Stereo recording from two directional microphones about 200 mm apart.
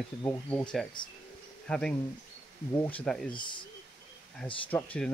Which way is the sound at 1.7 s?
5° left (ahead or behind).